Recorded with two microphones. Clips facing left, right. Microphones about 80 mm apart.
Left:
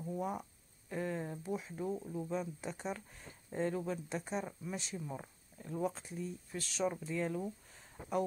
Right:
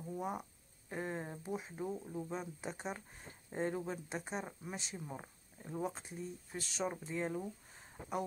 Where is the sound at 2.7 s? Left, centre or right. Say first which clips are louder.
Left 2 dB; right.